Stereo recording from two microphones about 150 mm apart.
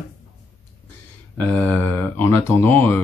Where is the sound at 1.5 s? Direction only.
10° left (ahead or behind).